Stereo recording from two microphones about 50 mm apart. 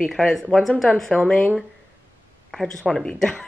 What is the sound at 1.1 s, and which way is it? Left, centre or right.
Speech, right.